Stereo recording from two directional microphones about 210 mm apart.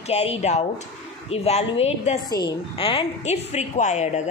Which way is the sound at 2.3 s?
20° left (ahead or behind).